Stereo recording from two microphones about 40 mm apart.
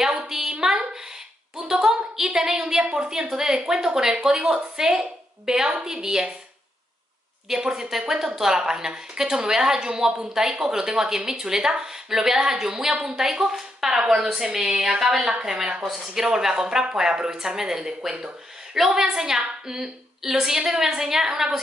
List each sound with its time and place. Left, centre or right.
0.2 s a sound: centre
2.9 s a woman's voice: centre
7.4 s a woman's voice: centre